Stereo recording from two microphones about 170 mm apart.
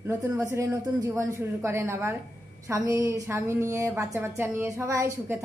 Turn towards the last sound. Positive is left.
turn(degrees=-15)  # may be behind; listen again after turning